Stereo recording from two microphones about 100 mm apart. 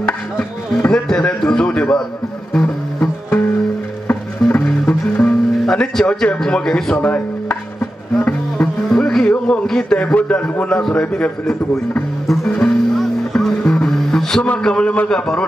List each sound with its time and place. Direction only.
0.0 s speech: 15° left (ahead or behind)
0.9 s a man's voice: 5° left (ahead or behind)
2.5 s music: 15° left (ahead or behind)
5.7 s speech: 5° left (ahead or behind)
12.3 s music: 10° left (ahead or behind)